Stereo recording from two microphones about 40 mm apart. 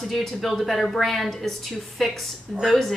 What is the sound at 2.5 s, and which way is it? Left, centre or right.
Speech, centre.